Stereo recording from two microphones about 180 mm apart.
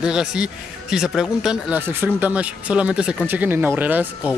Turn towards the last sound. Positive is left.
turn(degrees=-10)  # may be behind; listen again after turning